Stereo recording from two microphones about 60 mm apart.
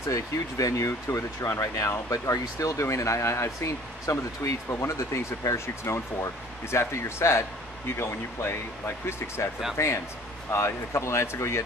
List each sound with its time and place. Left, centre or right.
0.1 s speech: left
5.4 s speech: left
5.9 s speech: left